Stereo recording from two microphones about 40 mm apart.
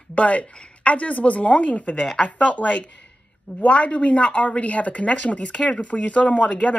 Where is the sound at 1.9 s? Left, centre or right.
Centre.